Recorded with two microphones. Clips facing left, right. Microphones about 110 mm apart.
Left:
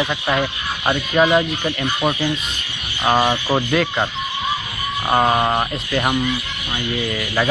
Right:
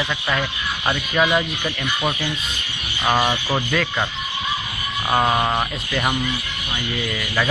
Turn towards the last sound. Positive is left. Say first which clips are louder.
# left 3 dB
turn(degrees=20)  # may be behind; listen again after turning